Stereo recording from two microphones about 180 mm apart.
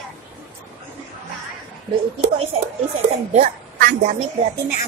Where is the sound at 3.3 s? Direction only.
45° right (ahead or behind).